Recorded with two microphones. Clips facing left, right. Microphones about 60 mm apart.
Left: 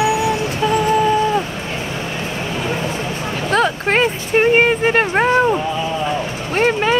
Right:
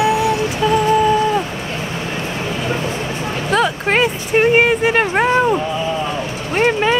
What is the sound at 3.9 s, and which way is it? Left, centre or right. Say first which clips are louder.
Speech: even; centre.